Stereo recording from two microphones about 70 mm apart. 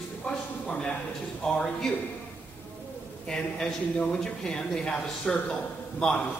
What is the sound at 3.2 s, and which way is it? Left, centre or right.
Speech, centre.